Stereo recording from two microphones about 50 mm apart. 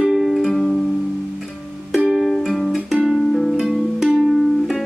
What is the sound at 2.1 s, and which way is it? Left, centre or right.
Music, centre.